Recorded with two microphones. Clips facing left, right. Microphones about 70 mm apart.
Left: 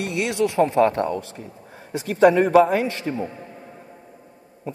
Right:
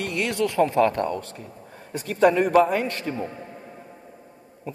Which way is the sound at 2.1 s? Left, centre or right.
Left.